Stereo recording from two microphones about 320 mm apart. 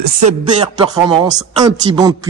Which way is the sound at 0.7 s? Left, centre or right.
Centre.